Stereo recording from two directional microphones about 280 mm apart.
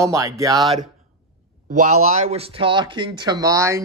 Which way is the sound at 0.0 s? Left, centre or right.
Centre.